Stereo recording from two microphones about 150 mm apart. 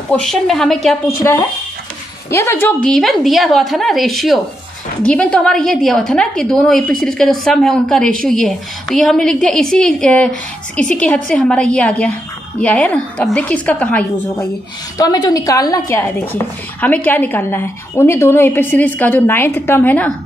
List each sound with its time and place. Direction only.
0.1 s a woman's voice: 5° left (ahead or behind)
2.3 s a woman's voice: 15° left (ahead or behind)
2.9 s a woman's voice: centre (ahead or behind)
15.0 s a woman's voice: 25° left (ahead or behind); by 20.1 s 10° left (ahead or behind)